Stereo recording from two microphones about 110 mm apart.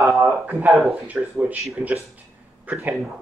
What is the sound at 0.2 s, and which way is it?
Speech, 20° right (ahead or behind).